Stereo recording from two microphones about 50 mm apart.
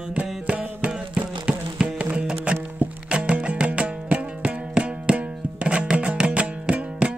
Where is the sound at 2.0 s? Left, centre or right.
Right.